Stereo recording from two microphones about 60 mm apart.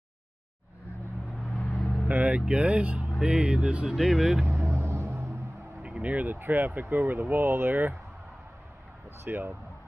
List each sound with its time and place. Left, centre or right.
1.4 s vehicle: centre
2.0 s vehicle: right
2.4 s speech: centre
3.0 s speech: centre
3.9 s speech: centre
4.5 s vehicle: right
5.8 s speech: right
9.2 s speech: right